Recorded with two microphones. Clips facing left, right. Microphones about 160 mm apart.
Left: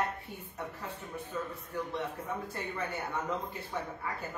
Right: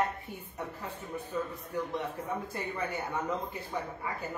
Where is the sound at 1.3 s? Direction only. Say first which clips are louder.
Right 3 dB; 15° right (ahead or behind).